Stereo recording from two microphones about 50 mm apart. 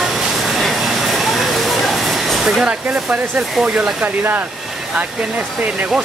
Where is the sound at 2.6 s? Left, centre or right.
Right.